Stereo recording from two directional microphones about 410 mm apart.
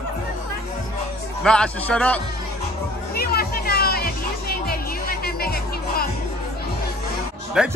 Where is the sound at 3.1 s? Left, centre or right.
Left.